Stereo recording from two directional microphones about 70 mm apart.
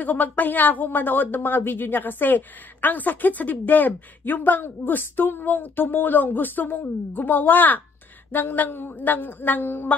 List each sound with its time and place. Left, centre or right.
0.0 s speech: left